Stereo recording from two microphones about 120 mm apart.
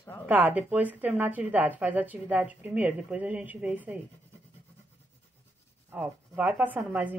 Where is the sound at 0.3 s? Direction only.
15° right (ahead or behind).